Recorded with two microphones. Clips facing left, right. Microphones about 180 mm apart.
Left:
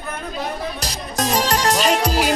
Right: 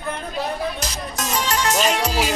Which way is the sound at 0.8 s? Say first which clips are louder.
Left 4 dB; 35° left (ahead or behind).